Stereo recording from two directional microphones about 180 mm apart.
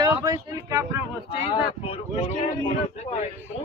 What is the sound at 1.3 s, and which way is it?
Speech, 35° left (ahead or behind).